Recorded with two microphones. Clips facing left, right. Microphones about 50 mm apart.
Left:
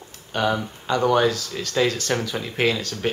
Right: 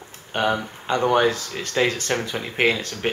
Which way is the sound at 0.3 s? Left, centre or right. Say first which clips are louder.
Even; right.